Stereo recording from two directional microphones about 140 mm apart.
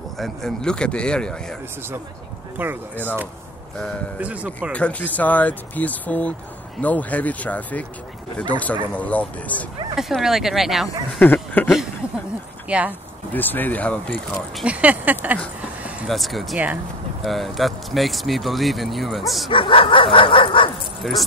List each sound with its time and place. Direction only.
0.2 s speech: 5° left (ahead or behind)
2.5 s speech: 15° right (ahead or behind)
4.2 s speech: 10° right (ahead or behind)
4.7 s speech: 10° left (ahead or behind)
9.9 s speech: centre (ahead or behind)
11.1 s a sound: 10° left (ahead or behind)
12.6 s speech: 10° right (ahead or behind)
13.3 s speech: 15° left (ahead or behind)
14.6 s speech: 10° right (ahead or behind)
16.1 s speech: centre (ahead or behind)
19.5 s speech: 40° left (ahead or behind)
21.0 s speech: centre (ahead or behind)